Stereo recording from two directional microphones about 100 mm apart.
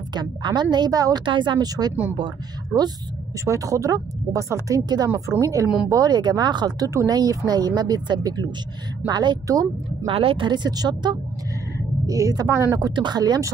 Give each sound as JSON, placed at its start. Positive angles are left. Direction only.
{"t": 0.1, "sound": "speech", "side_deg": -45}
{"t": 1.2, "sound": "speech", "side_deg": -55}
{"t": 2.7, "sound": "speech", "side_deg": -25}
{"t": 6.9, "sound": "speech", "side_deg": -35}
{"t": 10.0, "sound": "speech", "side_deg": -65}
{"t": 12.1, "sound": "speech", "side_deg": -35}
{"t": 12.7, "sound": "speech", "side_deg": -45}